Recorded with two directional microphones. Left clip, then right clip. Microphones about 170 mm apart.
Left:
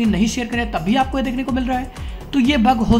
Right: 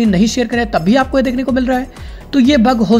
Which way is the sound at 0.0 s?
30° right (ahead or behind).